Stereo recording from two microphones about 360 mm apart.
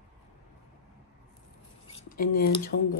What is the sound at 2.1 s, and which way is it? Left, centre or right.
Speech, left.